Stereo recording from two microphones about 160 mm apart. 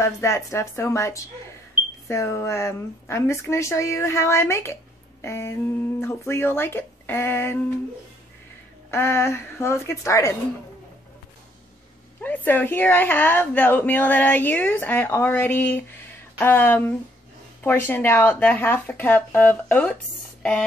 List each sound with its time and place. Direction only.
0.0 s speech: 20° left (ahead or behind)
8.9 s speech: 15° left (ahead or behind)
12.2 s speech: 10° left (ahead or behind)